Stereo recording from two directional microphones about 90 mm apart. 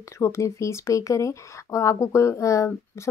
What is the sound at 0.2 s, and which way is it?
Speech, 35° left (ahead or behind).